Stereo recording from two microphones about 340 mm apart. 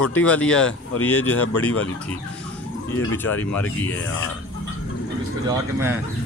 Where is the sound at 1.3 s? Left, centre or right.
Left.